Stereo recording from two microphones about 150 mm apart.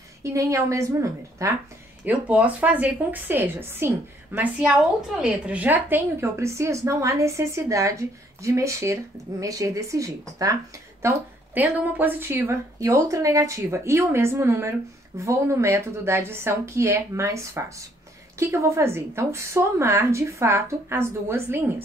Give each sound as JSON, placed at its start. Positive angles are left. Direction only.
{"t": 0.2, "sound": "a woman's voice", "side_deg": -20}
{"t": 2.0, "sound": "a woman's voice", "side_deg": -10}